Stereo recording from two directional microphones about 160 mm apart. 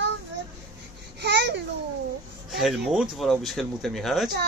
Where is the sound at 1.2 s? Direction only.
90° right.